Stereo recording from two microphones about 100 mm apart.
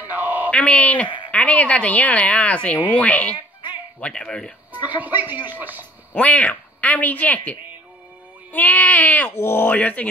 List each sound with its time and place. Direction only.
0.0 s a sound: 20° right (ahead or behind)
0.5 s speech: 15° left (ahead or behind)
4.8 s speech: 15° right (ahead or behind)
6.1 s speech: 15° left (ahead or behind)